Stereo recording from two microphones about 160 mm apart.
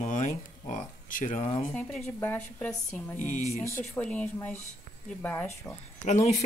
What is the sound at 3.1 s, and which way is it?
Speech, 50° left (ahead or behind).